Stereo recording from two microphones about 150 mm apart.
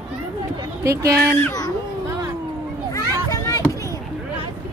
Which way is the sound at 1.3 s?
20° left (ahead or behind).